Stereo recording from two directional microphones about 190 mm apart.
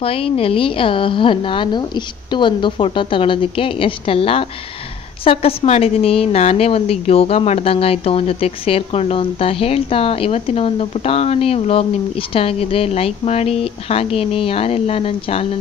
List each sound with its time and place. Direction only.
0.0 s a woman's voice: 30° left (ahead or behind)